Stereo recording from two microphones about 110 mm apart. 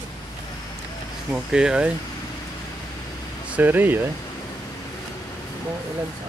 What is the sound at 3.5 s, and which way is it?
Speech, 15° right (ahead or behind).